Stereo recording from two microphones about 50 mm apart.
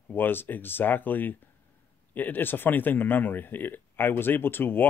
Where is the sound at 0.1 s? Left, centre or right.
Left.